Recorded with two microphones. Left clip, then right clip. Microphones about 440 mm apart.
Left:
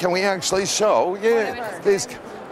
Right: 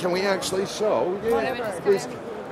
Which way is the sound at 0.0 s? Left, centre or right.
Left.